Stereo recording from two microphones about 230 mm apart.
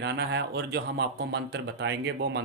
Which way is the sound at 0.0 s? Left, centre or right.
Right.